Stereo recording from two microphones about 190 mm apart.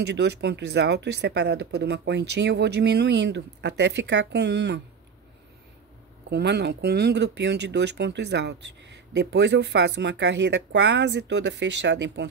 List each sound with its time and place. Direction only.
0.0 s speech: 65° right (ahead or behind)
6.3 s speech: 60° right (ahead or behind)